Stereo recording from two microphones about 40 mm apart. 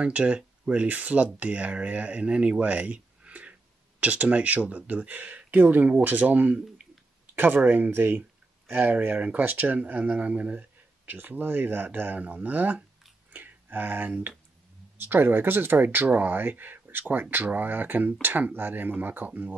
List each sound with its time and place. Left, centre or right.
0.0 s speech: right
2.6 s a sound: right
4.0 s speech: right
7.3 s speech: right